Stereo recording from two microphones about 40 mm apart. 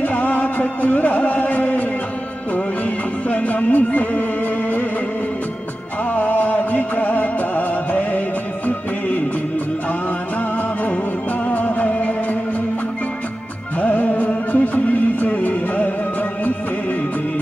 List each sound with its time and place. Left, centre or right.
0.0 s music: left
3.3 s music: left
6.1 s music: left
11.4 s music: left
13.7 s music: left